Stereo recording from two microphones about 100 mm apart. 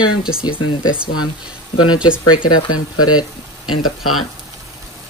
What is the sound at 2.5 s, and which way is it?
Speech, 45° left (ahead or behind).